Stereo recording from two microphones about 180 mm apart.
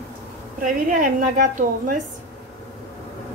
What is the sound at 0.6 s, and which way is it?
A woman's voice, 45° right (ahead or behind).